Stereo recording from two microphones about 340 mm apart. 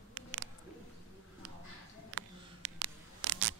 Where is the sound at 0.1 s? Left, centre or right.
Right.